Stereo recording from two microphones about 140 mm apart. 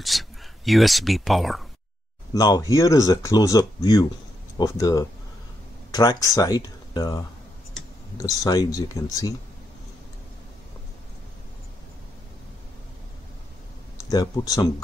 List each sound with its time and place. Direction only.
0.0 s speech: centre (ahead or behind)
2.3 s speech: 30° left (ahead or behind)
14.0 s speech: 25° left (ahead or behind)